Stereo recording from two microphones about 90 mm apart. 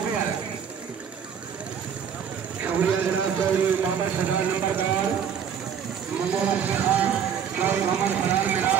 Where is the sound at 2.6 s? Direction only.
15° right (ahead or behind).